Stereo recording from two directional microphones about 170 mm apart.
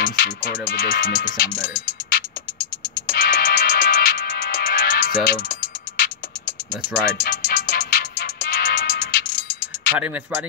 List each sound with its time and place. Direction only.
0.0 s speech: 60° left (ahead or behind)
3.1 s music: 65° left (ahead or behind)
9.9 s speech: 10° right (ahead or behind)